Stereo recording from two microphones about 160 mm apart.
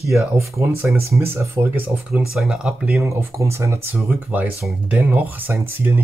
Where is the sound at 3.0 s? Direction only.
20° right (ahead or behind).